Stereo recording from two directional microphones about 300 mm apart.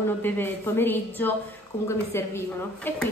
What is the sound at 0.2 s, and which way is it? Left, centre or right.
A woman's voice, centre.